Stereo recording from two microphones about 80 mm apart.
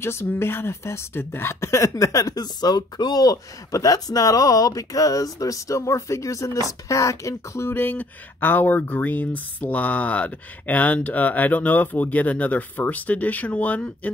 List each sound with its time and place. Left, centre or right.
0.0 s speech: left